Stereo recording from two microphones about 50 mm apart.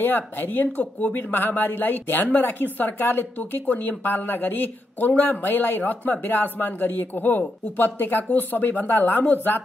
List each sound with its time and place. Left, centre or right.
0.0 s speech: left